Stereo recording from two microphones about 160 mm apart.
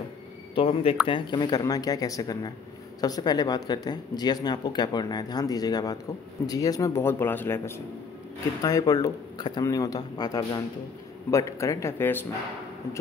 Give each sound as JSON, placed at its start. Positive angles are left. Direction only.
{"t": 0.6, "sound": "speech", "side_deg": 35}